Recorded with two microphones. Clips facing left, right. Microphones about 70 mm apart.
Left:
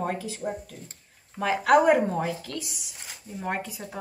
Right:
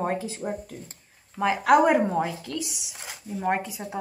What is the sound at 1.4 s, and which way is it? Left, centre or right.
Speech, centre.